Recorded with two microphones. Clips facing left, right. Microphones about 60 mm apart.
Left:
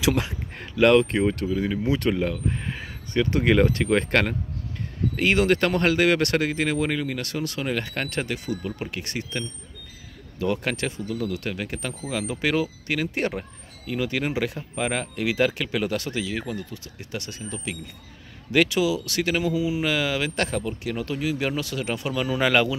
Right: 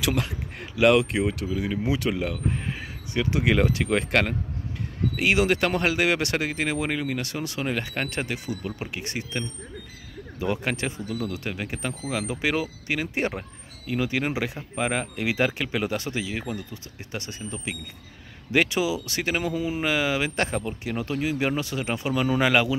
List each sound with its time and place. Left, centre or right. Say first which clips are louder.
0.0 s speech: left 3 dB; centre; by 19.5 s right
19.5 s speech: left 3 dB; right
19.8 s speech: even; right